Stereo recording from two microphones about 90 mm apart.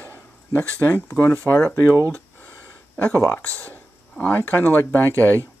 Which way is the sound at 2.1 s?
15° left (ahead or behind).